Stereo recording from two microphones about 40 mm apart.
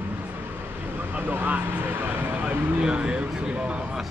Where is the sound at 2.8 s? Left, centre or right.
Right.